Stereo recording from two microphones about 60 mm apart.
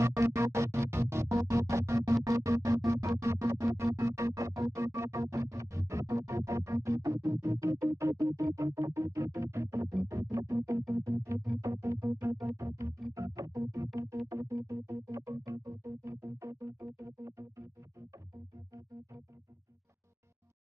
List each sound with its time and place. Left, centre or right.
0.0 s music: right